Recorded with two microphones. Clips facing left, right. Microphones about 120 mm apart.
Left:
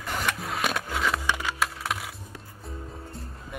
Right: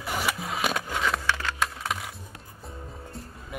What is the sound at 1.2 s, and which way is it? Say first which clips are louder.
Music: even; 15° left (ahead or behind).